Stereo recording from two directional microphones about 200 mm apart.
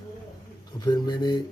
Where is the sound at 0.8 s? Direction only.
20° left (ahead or behind).